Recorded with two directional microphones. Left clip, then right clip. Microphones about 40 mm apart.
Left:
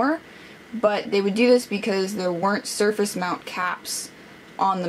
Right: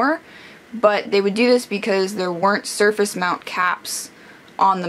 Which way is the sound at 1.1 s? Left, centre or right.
Right.